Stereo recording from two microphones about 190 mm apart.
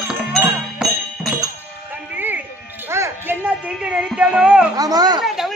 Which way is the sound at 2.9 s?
10° right (ahead or behind).